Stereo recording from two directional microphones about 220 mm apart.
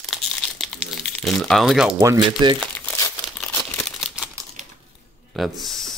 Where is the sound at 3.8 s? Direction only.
Centre (ahead or behind).